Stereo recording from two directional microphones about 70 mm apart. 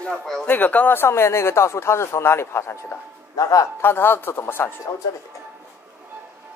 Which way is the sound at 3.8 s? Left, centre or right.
Left.